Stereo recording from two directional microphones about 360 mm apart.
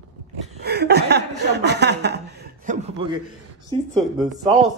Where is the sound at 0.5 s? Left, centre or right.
Right.